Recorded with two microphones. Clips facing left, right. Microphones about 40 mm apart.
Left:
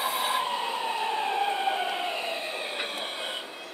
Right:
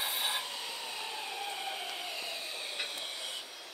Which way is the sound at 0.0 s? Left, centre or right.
Left.